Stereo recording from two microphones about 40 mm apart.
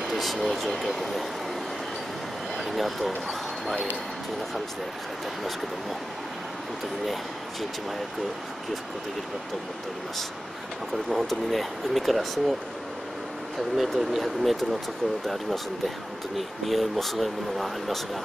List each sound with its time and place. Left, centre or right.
0.0 s speech: centre
2.6 s speech: centre
11.1 s speech: centre
13.7 s speech: centre